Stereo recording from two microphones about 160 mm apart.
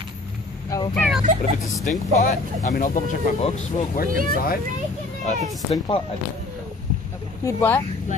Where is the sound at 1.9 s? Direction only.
55° left (ahead or behind).